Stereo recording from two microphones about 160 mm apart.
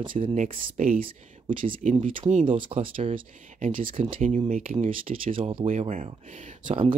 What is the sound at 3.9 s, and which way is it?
Speech, 35° right (ahead or behind).